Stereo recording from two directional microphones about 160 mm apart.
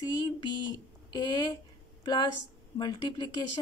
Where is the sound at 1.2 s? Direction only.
25° left (ahead or behind).